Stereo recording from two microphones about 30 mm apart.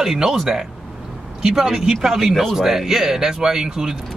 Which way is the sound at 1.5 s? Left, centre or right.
Centre.